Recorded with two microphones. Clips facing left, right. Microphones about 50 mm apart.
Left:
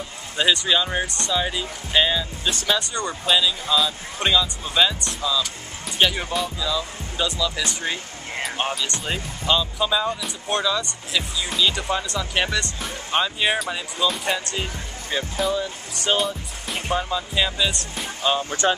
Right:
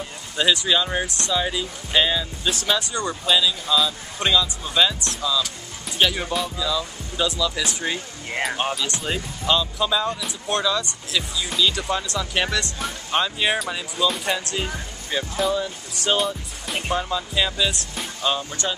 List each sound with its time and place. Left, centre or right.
0.4 s speech: centre
18.6 s speech: left